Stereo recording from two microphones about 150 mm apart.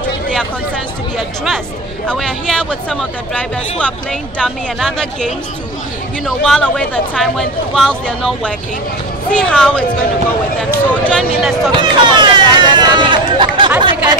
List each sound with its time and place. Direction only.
1.1 s speech: centre (ahead or behind)
10.9 s speech: 10° left (ahead or behind)
11.7 s a sound: 30° right (ahead or behind)
13.7 s speech: 30° right (ahead or behind)